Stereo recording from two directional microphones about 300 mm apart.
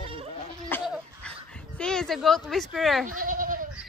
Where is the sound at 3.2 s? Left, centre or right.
Right.